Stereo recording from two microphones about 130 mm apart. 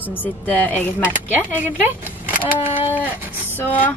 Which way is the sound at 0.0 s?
15° left (ahead or behind).